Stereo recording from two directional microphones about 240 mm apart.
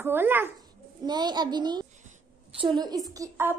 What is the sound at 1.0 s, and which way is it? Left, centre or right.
A child's voice, centre.